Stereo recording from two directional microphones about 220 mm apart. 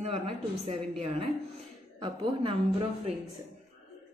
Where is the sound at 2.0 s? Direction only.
20° right (ahead or behind).